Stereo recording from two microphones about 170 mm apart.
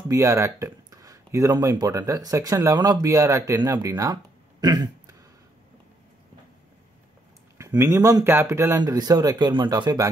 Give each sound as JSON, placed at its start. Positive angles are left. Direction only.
{"t": 0.1, "sound": "speech", "side_deg": -20}
{"t": 7.5, "sound": "speech", "side_deg": -15}